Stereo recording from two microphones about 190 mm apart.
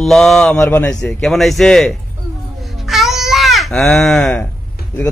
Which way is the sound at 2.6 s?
Centre (ahead or behind).